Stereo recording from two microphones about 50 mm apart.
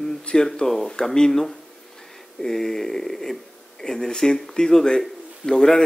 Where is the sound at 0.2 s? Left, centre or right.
Centre.